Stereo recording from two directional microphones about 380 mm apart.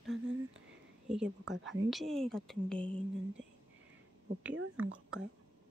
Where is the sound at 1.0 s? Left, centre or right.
Centre.